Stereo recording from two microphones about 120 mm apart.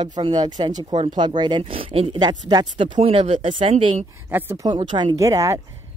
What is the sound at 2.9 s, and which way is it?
Speech, 50° right (ahead or behind).